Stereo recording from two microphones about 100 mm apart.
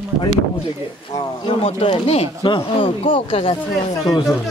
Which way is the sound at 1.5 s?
65° left (ahead or behind).